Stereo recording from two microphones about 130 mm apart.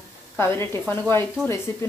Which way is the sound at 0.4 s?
20° left (ahead or behind).